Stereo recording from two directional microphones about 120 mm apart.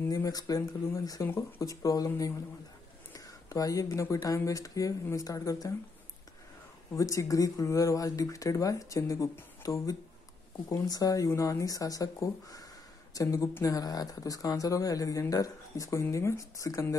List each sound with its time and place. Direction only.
0.1 s speech: 30° left (ahead or behind)
7.0 s speech: 25° left (ahead or behind)